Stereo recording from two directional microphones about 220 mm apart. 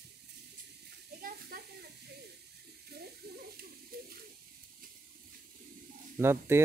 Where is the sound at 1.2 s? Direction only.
45° right (ahead or behind).